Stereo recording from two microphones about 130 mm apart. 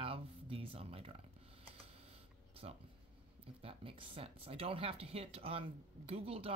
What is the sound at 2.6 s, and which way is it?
Speech, 55° right (ahead or behind).